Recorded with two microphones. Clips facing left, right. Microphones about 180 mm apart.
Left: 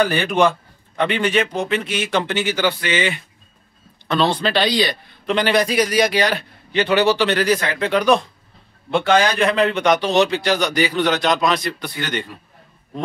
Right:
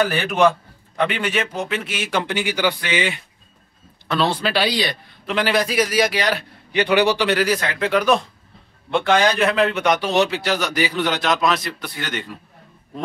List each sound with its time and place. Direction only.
0.0 s a man's voice: 5° right (ahead or behind)
4.1 s a man's voice: 5° right (ahead or behind)